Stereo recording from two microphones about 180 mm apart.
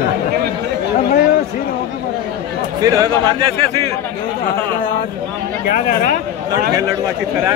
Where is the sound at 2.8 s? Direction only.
20° right (ahead or behind).